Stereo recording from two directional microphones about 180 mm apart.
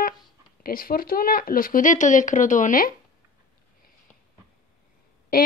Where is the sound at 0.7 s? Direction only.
55° left (ahead or behind).